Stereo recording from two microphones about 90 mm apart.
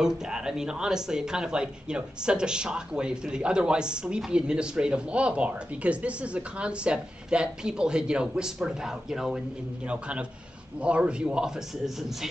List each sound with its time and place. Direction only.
0.0 s speech: 5° right (ahead or behind)